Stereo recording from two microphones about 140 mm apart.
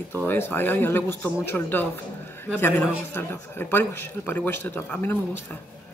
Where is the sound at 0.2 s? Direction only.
15° left (ahead or behind).